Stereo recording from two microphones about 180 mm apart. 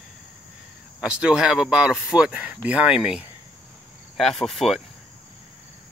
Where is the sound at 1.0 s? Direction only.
5° right (ahead or behind).